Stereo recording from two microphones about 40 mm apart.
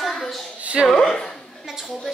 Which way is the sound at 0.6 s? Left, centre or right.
Right.